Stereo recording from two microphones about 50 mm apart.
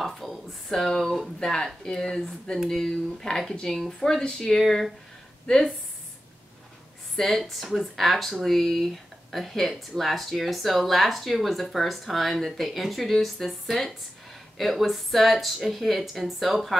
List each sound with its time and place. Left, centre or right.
0.0 s speech: centre
5.5 s speech: centre
7.2 s speech: centre